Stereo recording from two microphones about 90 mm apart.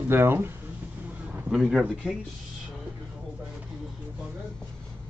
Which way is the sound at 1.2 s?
15° right (ahead or behind).